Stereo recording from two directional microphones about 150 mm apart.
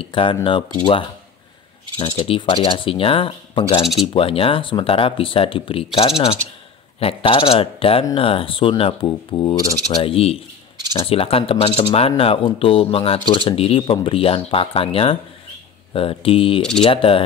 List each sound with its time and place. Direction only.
0.0 s speech: 35° left (ahead or behind)
3.8 s speech: centre (ahead or behind)
4.1 s speech: 40° left (ahead or behind)